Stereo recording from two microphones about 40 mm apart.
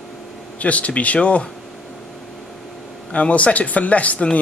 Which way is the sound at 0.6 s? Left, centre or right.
Left.